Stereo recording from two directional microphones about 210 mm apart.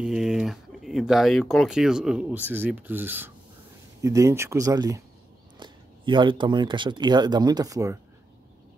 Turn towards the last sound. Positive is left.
turn(degrees=-15)  # may be behind; listen again after turning